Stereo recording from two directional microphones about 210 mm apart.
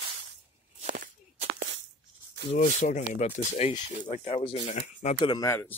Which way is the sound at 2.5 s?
35° left (ahead or behind).